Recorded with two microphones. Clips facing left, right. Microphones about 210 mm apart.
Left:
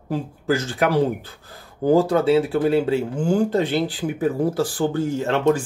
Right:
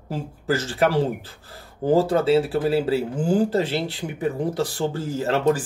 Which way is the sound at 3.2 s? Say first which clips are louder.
Even; 35° right (ahead or behind).